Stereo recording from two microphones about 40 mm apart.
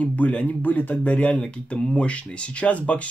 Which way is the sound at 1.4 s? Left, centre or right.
Left.